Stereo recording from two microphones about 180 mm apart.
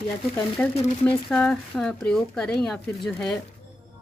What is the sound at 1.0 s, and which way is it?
Speech, 5° left (ahead or behind).